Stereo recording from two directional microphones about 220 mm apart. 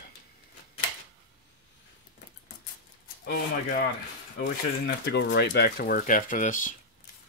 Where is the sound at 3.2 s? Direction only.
45° left (ahead or behind).